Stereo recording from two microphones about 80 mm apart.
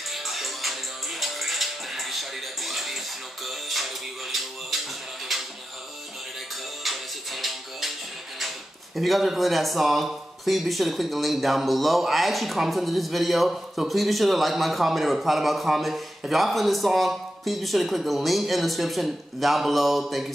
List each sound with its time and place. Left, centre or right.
0.1 s music: centre
6.8 s music: centre
8.4 s speech: centre